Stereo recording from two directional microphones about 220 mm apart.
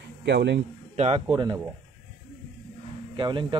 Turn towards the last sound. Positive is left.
turn(degrees=-20)  # may be behind; listen again after turning